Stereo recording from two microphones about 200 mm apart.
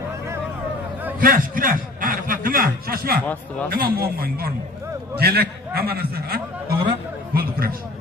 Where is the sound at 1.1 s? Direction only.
45° right (ahead or behind).